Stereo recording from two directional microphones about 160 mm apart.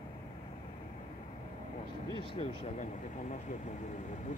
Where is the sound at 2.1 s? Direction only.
45° left (ahead or behind).